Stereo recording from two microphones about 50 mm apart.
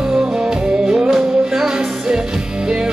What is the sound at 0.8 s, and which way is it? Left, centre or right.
Music, centre.